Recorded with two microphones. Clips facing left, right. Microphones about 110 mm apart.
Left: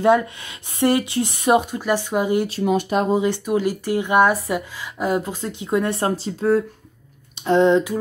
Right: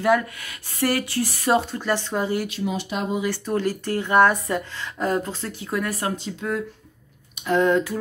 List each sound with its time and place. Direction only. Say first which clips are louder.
0.0 s speech: left 4 dB; 25° left (ahead or behind)
2.6 s speech: left 7 dB; 50° left (ahead or behind)
3.2 s speech: left 4 dB; 20° left (ahead or behind)